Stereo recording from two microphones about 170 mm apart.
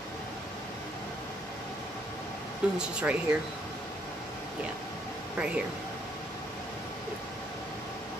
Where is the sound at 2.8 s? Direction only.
5° right (ahead or behind).